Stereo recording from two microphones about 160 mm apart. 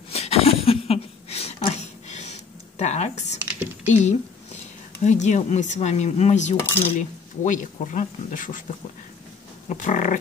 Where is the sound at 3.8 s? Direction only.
50° left (ahead or behind).